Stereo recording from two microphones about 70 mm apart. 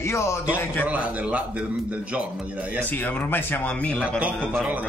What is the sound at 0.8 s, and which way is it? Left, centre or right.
Speech, right.